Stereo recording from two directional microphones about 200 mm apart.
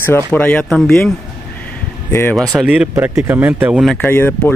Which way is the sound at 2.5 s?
5° right (ahead or behind).